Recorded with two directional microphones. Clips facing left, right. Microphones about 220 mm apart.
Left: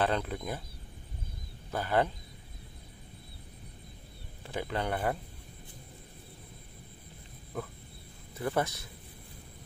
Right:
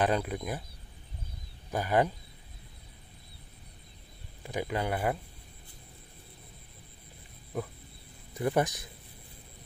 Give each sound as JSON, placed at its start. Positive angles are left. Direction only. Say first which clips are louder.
{"t": 0.0, "sound": "speech", "louder": "right 2 dB", "side_deg": -10}
{"t": 1.7, "sound": "speech", "louder": "right 2 dB", "side_deg": -15}
{"t": 4.4, "sound": "speech", "louder": "right 2 dB", "side_deg": -15}
{"t": 8.4, "sound": "speech", "louder": "right 3 dB", "side_deg": -15}